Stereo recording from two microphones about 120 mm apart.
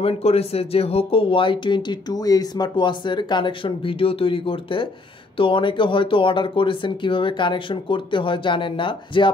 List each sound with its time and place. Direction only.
0.0 s speech: 55° left (ahead or behind)